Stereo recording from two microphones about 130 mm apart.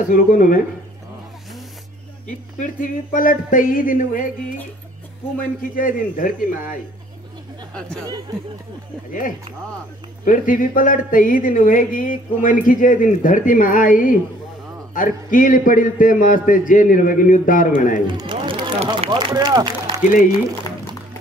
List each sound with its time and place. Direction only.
0.1 s speech: 90° left
2.6 s speech: 90° left
5.4 s speech: 90° left
10.2 s speech: 90° left
18.0 s speech: 35° right (ahead or behind)